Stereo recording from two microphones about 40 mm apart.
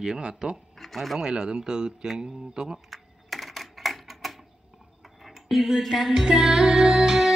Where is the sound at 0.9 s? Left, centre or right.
Centre.